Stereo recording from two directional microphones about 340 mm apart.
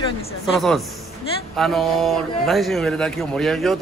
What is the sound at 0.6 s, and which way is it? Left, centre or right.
A man's voice, centre.